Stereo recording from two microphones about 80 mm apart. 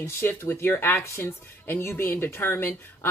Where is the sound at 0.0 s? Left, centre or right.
Left.